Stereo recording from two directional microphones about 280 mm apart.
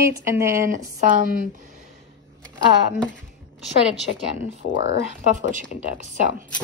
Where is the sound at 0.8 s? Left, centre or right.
Right.